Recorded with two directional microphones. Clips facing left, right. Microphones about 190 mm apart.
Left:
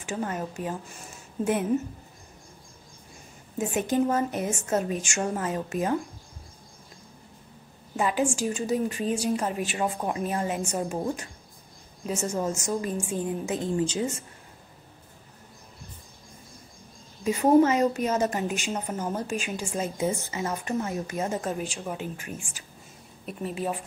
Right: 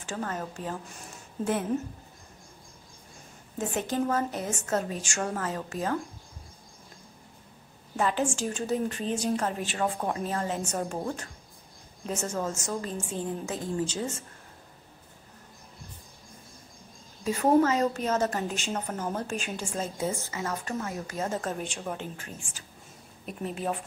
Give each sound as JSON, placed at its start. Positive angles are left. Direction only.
{"t": 0.0, "sound": "a woman's voice", "side_deg": 15}
{"t": 3.9, "sound": "a woman's voice", "side_deg": 15}
{"t": 7.9, "sound": "a woman's voice", "side_deg": 10}
{"t": 17.2, "sound": "a woman's voice", "side_deg": 10}